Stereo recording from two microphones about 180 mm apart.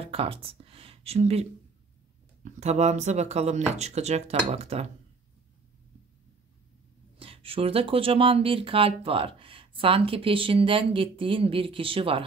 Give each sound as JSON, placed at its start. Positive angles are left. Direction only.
{"t": 0.0, "sound": "speech", "side_deg": -30}
{"t": 7.2, "sound": "speech", "side_deg": -30}